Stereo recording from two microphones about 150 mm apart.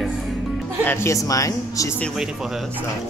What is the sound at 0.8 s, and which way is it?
Speech, 20° left (ahead or behind).